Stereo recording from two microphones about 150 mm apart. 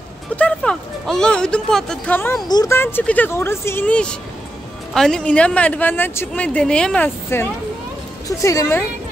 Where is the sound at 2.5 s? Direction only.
25° left (ahead or behind).